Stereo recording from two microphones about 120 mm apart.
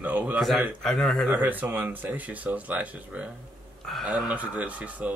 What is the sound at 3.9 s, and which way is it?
Speech, centre (ahead or behind).